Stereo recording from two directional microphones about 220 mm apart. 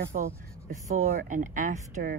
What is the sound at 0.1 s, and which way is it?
Speech, 35° right (ahead or behind).